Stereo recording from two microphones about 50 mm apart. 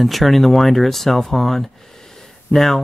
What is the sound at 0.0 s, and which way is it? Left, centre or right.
Speech, centre.